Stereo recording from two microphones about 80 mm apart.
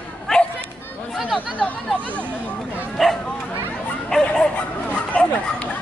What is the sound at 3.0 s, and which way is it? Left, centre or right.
Bow-wow, centre.